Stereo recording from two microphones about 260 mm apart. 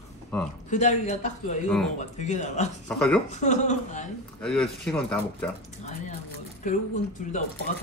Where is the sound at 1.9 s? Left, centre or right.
Left.